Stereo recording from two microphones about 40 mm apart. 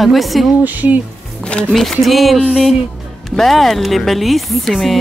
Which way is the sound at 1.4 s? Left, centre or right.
Left.